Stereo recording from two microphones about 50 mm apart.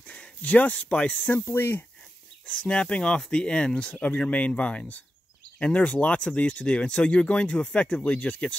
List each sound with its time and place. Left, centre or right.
0.0 s a sound: left
0.7 s speech: left
1.4 s speech: left
2.4 s speech: left